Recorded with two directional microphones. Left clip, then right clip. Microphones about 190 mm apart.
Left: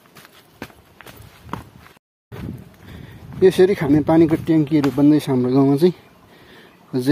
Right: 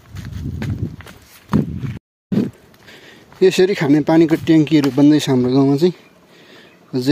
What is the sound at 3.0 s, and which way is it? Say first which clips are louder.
Speech: right 1 dB; 10° right (ahead or behind).